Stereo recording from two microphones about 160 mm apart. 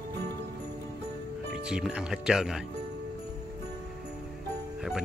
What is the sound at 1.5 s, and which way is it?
Speech, 5° right (ahead or behind).